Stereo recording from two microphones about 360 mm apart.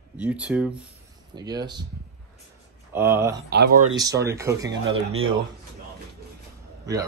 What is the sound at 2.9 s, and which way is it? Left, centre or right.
Speech, centre.